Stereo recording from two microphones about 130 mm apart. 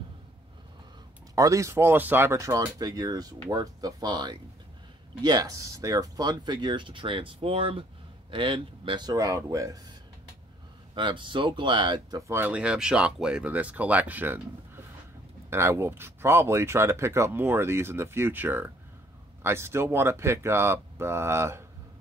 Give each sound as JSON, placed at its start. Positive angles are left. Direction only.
{"t": 1.3, "sound": "speech", "side_deg": -25}
{"t": 11.0, "sound": "speech", "side_deg": -40}
{"t": 12.2, "sound": "speech", "side_deg": -20}
{"t": 15.5, "sound": "speech", "side_deg": -20}